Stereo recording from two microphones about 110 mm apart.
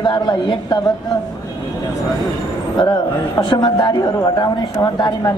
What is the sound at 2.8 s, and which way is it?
A man's voice, 40° left (ahead or behind).